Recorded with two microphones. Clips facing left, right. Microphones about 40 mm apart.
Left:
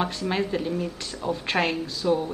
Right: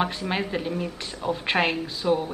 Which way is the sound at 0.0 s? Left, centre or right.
Right.